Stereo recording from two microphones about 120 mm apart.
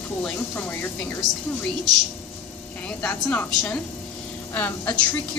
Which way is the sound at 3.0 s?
10° left (ahead or behind).